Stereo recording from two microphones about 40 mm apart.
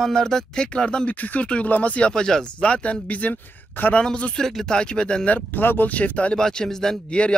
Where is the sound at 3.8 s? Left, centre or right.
Left.